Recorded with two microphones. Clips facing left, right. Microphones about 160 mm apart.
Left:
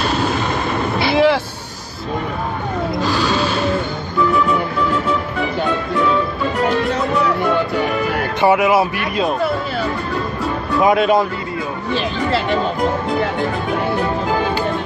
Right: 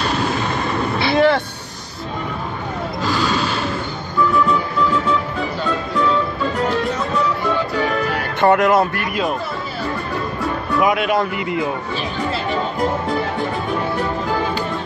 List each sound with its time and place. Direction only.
1.1 s vehicle: 5° left (ahead or behind)
8.4 s speech: 5° left (ahead or behind)
10.8 s speech: 30° left (ahead or behind)
11.9 s speech: 85° left